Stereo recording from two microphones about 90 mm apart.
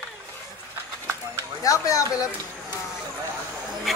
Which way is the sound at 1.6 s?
40° left (ahead or behind).